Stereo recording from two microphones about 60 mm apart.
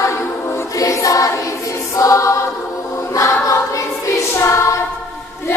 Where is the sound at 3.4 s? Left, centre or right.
Left.